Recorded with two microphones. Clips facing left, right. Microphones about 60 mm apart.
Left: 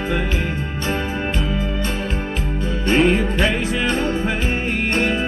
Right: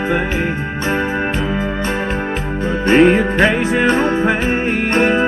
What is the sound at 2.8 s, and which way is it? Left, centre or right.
Music, right.